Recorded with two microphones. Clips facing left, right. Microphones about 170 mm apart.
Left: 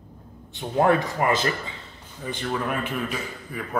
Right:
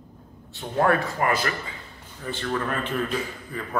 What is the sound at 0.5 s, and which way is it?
A man's voice, 20° left (ahead or behind).